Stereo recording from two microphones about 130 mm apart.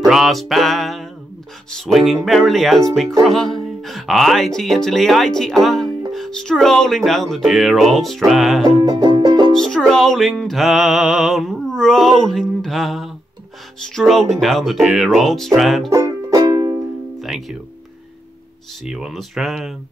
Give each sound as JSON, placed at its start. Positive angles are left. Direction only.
{"t": 0.0, "sound": "speech", "side_deg": -5}
{"t": 8.6, "sound": "music", "side_deg": -30}
{"t": 9.5, "sound": "speech", "side_deg": 5}
{"t": 15.9, "sound": "music", "side_deg": -30}
{"t": 17.2, "sound": "music", "side_deg": 0}
{"t": 18.9, "sound": "speech", "side_deg": -5}